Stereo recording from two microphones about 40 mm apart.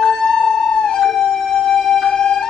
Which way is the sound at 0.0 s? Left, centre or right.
Centre.